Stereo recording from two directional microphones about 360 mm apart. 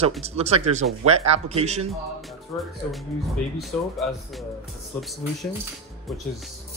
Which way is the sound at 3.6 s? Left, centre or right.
Centre.